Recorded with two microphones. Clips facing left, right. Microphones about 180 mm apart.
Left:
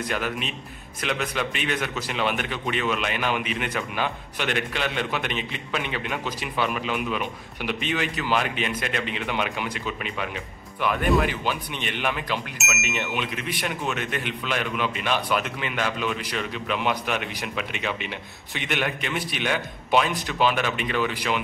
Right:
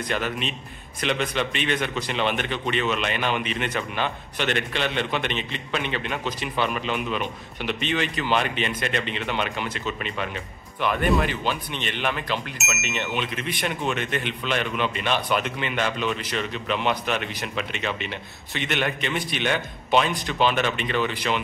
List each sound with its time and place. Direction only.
0.1 s a man's voice: 5° left (ahead or behind)